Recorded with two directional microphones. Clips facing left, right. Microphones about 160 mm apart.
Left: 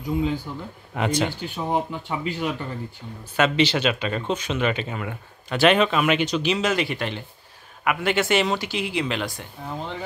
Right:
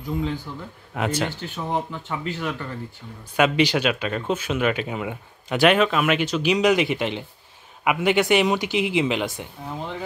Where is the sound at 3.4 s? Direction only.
10° right (ahead or behind).